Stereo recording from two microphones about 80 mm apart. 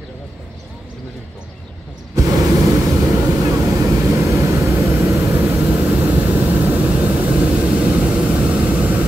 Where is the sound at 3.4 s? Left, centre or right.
Right.